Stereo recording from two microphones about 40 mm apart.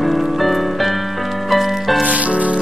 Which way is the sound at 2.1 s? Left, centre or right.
Right.